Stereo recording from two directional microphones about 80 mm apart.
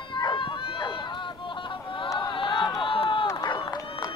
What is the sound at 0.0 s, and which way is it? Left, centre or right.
Run, left.